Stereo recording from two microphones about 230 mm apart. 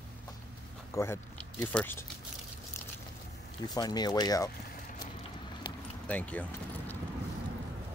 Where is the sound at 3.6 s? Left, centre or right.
Centre.